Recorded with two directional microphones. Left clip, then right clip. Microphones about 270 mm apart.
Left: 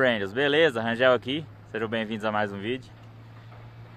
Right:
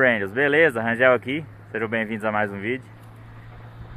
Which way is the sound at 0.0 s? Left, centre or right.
Centre.